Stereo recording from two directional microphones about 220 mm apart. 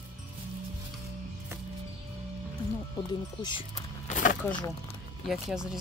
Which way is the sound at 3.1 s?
20° left (ahead or behind).